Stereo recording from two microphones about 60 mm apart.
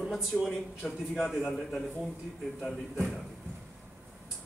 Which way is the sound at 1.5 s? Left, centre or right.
Centre.